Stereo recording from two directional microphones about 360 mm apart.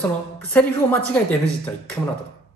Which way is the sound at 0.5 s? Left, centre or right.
Centre.